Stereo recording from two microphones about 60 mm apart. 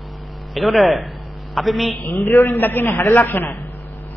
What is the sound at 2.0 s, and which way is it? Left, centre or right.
A man's voice, left.